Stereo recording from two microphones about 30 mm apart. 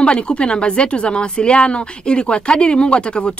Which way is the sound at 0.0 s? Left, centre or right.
Left.